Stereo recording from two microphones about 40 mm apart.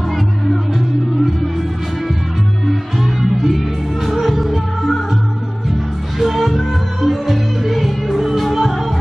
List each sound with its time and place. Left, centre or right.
0.1 s music: centre
2.6 s music: centre
6.1 s music: centre